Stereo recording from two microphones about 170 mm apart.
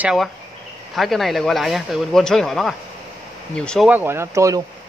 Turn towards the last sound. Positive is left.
turn(degrees=-15)  # may be behind; listen again after turning